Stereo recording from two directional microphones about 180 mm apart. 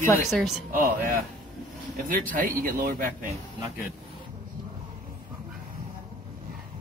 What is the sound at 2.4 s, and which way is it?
Speech, 50° right (ahead or behind).